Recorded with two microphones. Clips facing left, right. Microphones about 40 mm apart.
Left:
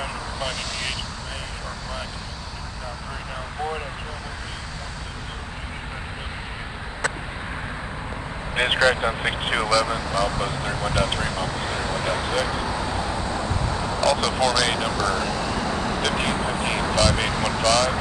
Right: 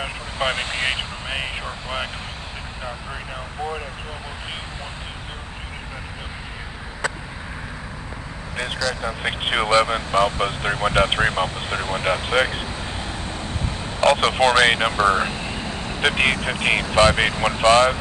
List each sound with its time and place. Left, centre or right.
0.0 s vehicle: right
8.5 s speech: left
9.4 s speech: right
12.8 s vehicle: right
15.9 s speech: right